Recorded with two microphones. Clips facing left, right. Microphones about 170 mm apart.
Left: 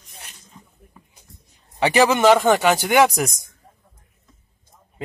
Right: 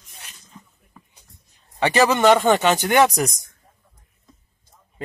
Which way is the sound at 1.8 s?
10° left (ahead or behind).